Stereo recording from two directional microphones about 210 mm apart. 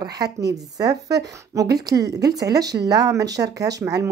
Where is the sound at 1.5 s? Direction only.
15° right (ahead or behind).